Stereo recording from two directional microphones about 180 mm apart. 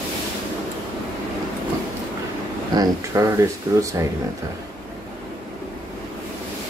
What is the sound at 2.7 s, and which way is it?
Speech, 20° right (ahead or behind).